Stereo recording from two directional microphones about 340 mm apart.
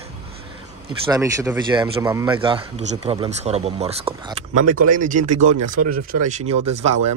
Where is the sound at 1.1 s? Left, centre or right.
Centre.